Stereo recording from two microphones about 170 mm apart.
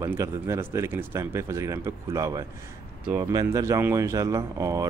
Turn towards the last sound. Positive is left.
turn(degrees=-20)  # may be behind; listen again after turning